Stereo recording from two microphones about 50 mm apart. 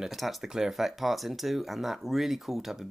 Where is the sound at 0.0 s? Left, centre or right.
Centre.